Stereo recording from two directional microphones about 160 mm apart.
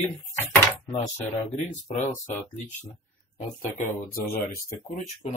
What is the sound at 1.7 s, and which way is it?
Speech, 50° left (ahead or behind).